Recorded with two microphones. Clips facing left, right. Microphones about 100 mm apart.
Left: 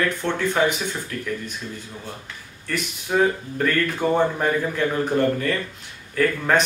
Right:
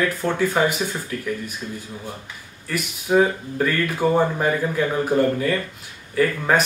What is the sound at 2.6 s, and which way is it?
Speech, 10° right (ahead or behind).